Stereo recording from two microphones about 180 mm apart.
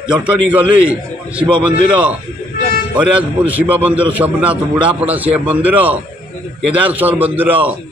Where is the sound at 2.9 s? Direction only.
10° right (ahead or behind).